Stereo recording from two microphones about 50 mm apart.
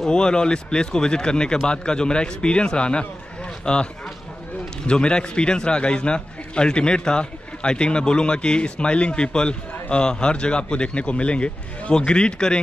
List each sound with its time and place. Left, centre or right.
0.0 s a man's voice: centre